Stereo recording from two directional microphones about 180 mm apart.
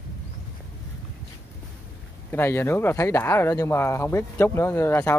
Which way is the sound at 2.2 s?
10° left (ahead or behind).